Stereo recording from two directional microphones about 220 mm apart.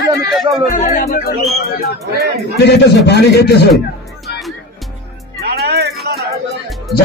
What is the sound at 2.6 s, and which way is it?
Speech, 50° left (ahead or behind).